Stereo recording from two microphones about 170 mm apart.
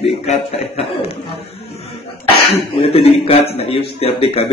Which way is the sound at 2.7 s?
30° left (ahead or behind).